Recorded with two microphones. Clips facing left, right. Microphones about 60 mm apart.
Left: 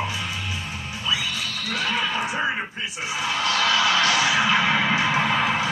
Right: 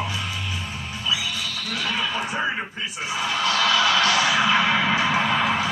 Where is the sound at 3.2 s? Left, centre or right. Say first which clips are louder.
Right 1 dB; left.